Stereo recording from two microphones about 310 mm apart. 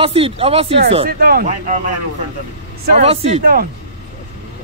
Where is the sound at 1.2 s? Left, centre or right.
Right.